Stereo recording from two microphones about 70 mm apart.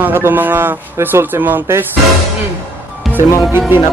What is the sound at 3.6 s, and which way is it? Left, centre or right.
Speech, right.